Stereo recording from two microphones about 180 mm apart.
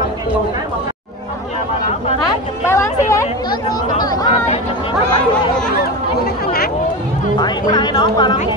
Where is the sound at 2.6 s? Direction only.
15° left (ahead or behind).